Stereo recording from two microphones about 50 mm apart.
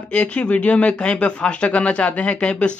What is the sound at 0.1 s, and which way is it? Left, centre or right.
Speech, left.